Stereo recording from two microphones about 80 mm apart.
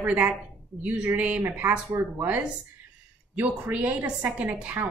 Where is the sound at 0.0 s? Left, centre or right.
Right.